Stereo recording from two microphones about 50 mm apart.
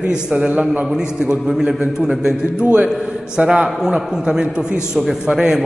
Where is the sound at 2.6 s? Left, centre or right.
Right.